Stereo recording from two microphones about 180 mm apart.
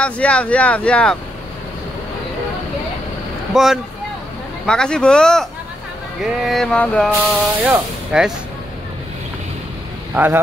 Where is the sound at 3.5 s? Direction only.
Centre (ahead or behind).